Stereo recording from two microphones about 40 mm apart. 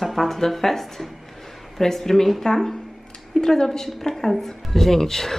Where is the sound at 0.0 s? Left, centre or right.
Centre.